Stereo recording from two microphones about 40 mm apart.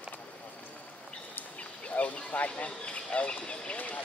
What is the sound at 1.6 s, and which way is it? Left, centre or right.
Speech, left.